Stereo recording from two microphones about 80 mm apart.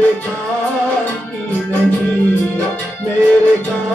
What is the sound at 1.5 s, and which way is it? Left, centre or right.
Music, centre.